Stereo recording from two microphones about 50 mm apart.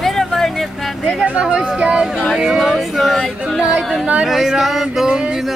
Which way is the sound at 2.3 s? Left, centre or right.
Centre.